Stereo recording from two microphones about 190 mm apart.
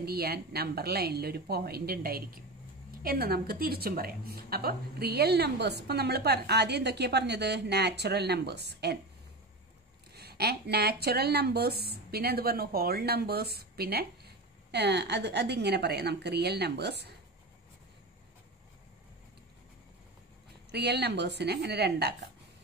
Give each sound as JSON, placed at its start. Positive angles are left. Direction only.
{"t": 0.0, "sound": "a woman's voice", "side_deg": -55}
{"t": 10.1, "sound": "a woman's voice", "side_deg": -55}
{"t": 20.7, "sound": "a woman's voice", "side_deg": -60}